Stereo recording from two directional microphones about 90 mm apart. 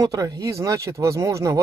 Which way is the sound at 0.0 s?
40° right (ahead or behind).